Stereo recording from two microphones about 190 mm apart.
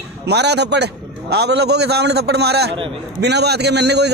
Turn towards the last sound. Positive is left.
turn(degrees=-60)  # may be behind; listen again after turning